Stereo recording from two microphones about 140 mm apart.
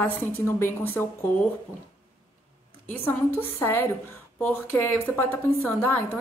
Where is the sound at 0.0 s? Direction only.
15° left (ahead or behind).